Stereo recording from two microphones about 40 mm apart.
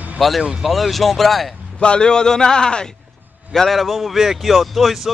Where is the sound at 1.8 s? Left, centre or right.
Left.